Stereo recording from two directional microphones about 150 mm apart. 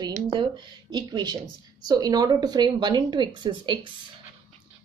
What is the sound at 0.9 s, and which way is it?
A woman's voice, 30° right (ahead or behind).